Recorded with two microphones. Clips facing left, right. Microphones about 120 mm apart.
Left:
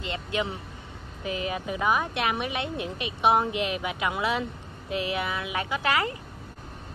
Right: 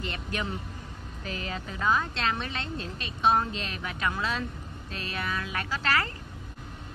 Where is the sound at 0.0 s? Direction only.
20° left (ahead or behind).